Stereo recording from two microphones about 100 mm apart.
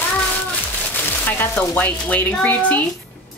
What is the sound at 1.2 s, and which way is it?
Speech, 20° left (ahead or behind).